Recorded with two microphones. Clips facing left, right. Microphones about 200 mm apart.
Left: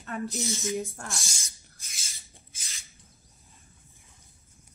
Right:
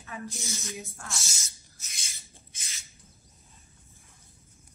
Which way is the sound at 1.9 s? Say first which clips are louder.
Right 1 dB; centre (ahead or behind).